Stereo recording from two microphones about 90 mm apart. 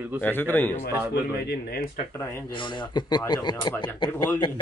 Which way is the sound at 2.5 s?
65° left (ahead or behind).